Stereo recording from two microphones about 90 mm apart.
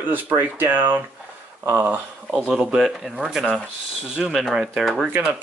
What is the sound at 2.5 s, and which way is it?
Speech, 5° right (ahead or behind).